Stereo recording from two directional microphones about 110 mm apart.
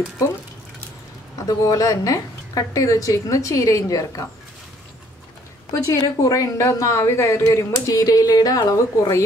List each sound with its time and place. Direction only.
1.6 s a woman's voice: 30° left (ahead or behind)
5.7 s a woman's voice: 30° left (ahead or behind)